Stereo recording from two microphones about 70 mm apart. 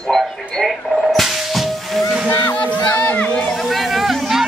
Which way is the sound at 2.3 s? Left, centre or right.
Left.